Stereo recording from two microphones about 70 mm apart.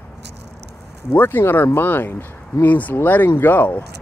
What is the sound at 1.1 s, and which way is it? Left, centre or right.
Speech, left.